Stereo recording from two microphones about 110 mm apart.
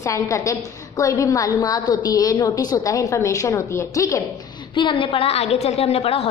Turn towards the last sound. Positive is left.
turn(degrees=60)  # may be behind; listen again after turning